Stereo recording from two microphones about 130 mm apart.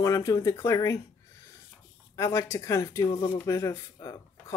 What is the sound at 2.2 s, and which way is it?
Speech, 20° left (ahead or behind).